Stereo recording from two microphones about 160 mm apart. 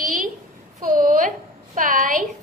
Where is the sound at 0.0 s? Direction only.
60° right (ahead or behind).